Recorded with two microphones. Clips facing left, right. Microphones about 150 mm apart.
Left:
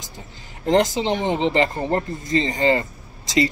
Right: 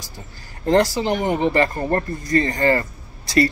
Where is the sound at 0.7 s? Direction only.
20° left (ahead or behind).